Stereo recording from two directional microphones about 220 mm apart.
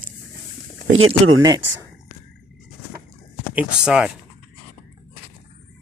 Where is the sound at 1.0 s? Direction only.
25° right (ahead or behind).